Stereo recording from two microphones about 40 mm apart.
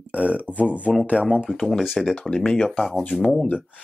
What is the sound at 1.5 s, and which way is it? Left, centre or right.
Speech, centre.